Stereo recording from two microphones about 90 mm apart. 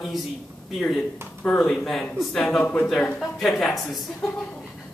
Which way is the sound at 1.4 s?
10° left (ahead or behind).